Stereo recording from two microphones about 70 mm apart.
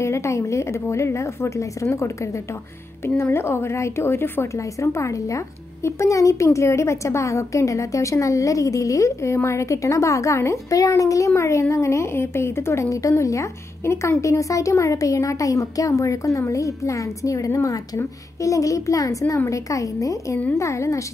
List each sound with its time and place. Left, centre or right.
0.0 s a woman's voice: left
12.9 s speech: left